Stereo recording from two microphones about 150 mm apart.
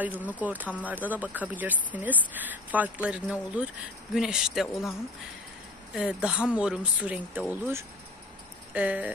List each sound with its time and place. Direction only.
0.0 s speech: 10° right (ahead or behind)
5.9 s speech: 5° right (ahead or behind)